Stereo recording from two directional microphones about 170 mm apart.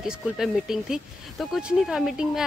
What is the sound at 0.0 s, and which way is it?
Speech, centre (ahead or behind).